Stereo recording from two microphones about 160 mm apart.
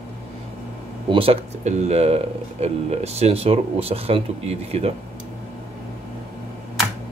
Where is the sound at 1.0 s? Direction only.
35° right (ahead or behind).